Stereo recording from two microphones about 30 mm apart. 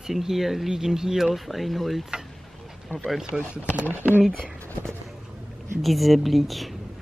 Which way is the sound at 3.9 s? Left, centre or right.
Right.